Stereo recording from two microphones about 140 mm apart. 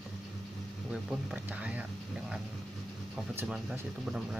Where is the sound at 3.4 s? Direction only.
5° right (ahead or behind).